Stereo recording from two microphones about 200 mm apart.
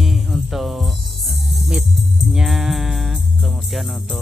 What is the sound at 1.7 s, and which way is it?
Music, 5° right (ahead or behind).